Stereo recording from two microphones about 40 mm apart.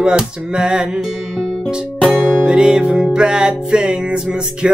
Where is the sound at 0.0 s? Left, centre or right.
Centre.